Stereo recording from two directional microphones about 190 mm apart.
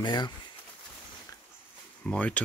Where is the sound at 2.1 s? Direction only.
5° left (ahead or behind).